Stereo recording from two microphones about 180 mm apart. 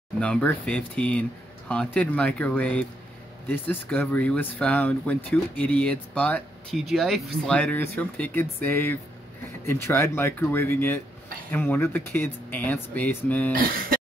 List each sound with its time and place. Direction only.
0.2 s speech: 5° left (ahead or behind)
13.5 s speech: 55° right (ahead or behind)